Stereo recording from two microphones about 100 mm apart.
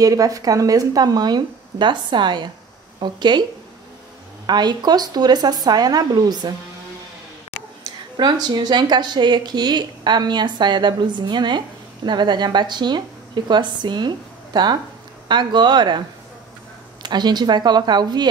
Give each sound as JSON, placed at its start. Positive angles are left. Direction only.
{"t": 0.0, "sound": "speech", "side_deg": -35}
{"t": 4.5, "sound": "speech", "side_deg": -45}
{"t": 8.2, "sound": "speech", "side_deg": -45}
{"t": 17.0, "sound": "speech", "side_deg": -45}